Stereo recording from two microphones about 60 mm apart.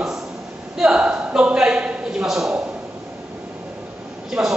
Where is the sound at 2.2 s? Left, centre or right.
Centre.